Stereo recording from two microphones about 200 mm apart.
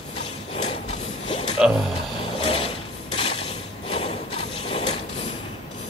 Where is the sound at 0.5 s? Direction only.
30° left (ahead or behind).